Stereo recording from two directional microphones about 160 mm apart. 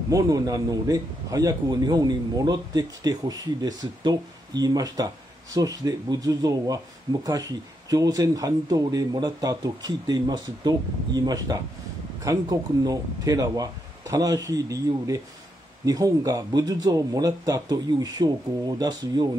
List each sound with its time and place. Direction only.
0.1 s a man's voice: 20° right (ahead or behind)